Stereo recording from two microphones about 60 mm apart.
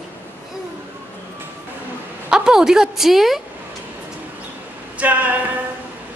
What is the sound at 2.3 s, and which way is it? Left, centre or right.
A woman's voice, centre.